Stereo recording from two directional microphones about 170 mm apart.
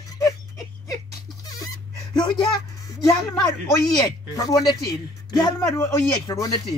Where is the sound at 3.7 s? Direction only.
20° left (ahead or behind).